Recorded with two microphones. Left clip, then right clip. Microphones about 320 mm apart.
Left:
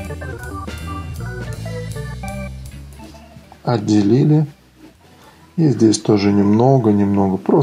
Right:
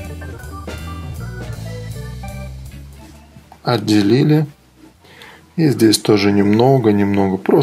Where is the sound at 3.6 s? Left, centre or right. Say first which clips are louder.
Right 2 dB; right.